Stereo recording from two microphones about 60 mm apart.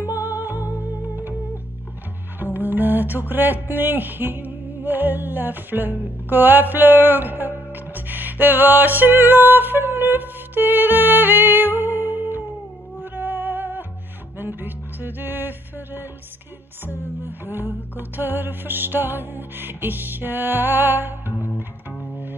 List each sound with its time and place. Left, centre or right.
0.0 s music: right
2.3 s speech: right
13.0 s music: right
17.2 s music: right